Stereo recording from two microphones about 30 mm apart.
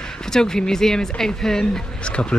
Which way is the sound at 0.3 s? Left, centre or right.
Left.